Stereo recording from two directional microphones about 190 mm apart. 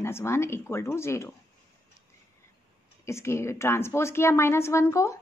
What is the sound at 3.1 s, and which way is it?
A woman's voice, 15° left (ahead or behind).